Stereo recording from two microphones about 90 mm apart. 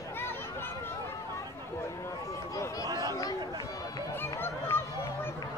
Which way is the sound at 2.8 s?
45° right (ahead or behind).